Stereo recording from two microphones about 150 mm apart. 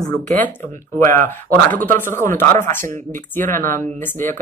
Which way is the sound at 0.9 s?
15° left (ahead or behind).